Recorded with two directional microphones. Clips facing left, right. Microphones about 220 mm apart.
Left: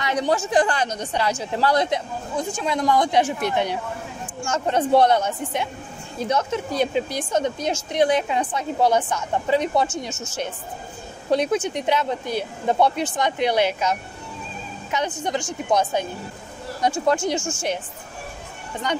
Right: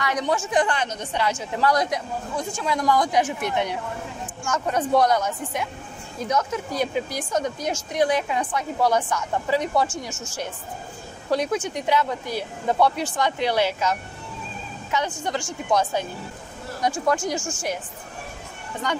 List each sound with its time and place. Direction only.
0.0 s speech: 30° left (ahead or behind)